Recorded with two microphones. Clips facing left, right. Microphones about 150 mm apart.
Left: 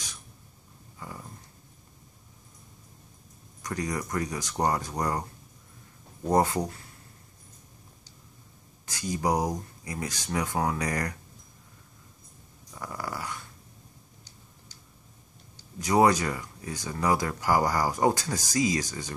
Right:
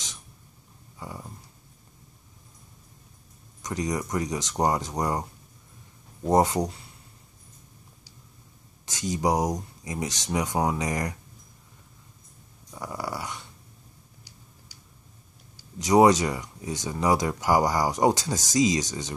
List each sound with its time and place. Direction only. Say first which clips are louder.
0.9 s dog: right 3 dB; 20° right (ahead or behind)
3.6 s speech: right 3 dB; 20° right (ahead or behind)
6.2 s speech: right 3 dB; 20° right (ahead or behind)
8.8 s speech: right 2 dB; 20° right (ahead or behind)
12.7 s dog: right 3 dB; 15° right (ahead or behind)
15.8 s speech: right 4 dB; 20° right (ahead or behind)